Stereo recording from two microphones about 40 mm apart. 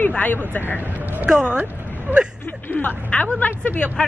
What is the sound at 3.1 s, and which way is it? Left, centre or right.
Speech, left.